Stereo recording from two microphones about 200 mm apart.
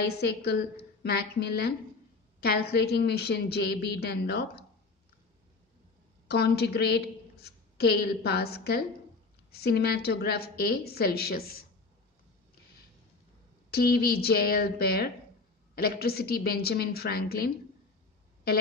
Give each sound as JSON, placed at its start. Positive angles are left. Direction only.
{"t": 0.0, "sound": "a woman's voice", "side_deg": 55}
{"t": 6.2, "sound": "a woman's voice", "side_deg": 55}
{"t": 13.7, "sound": "a woman's voice", "side_deg": 50}